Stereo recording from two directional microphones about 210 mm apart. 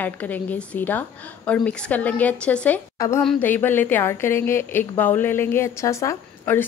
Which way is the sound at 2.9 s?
15° left (ahead or behind).